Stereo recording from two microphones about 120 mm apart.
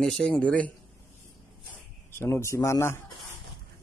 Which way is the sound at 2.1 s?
20° left (ahead or behind).